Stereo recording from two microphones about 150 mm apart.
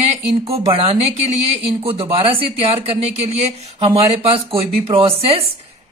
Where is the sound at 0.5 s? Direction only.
40° right (ahead or behind).